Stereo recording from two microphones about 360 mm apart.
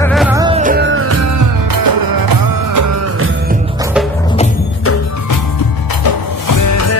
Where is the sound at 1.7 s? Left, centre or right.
Right.